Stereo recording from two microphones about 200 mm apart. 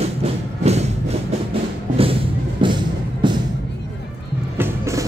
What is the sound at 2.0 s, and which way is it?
Music, 25° right (ahead or behind).